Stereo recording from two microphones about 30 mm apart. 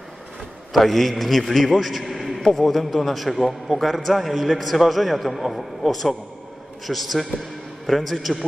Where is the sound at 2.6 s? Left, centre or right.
Centre.